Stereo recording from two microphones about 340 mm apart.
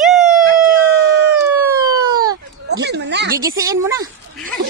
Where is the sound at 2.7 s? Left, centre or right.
Right.